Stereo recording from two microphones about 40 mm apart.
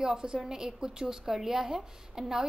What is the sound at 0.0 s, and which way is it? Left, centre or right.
A woman's voice, centre.